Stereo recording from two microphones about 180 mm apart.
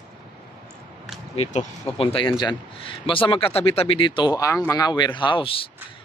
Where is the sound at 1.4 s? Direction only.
35° left (ahead or behind).